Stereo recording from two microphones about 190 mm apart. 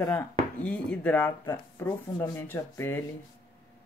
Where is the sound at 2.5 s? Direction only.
10° left (ahead or behind).